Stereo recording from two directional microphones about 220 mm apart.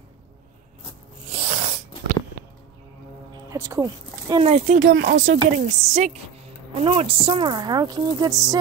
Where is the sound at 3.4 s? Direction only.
15° right (ahead or behind).